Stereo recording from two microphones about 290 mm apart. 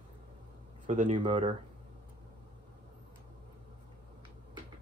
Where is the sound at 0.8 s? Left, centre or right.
Right.